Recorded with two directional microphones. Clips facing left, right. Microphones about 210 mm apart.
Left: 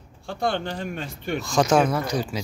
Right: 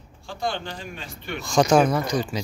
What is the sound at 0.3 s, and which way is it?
A man's voice, 60° left (ahead or behind).